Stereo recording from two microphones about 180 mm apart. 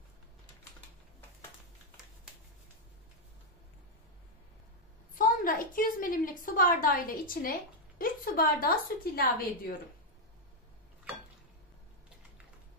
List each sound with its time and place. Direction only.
5.1 s a woman's voice: 50° left (ahead or behind)